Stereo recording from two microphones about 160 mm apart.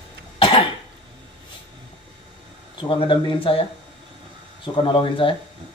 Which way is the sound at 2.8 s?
30° left (ahead or behind).